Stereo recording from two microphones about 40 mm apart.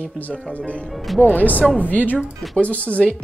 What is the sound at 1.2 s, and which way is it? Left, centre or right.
Speech, left.